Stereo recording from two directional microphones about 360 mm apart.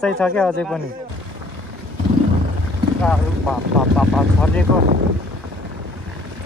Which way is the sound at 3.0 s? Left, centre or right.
Centre.